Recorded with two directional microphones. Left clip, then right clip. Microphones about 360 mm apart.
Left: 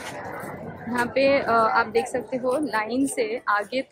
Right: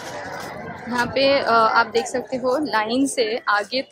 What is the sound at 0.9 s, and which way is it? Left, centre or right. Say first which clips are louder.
A woman's voice: right 2 dB; centre.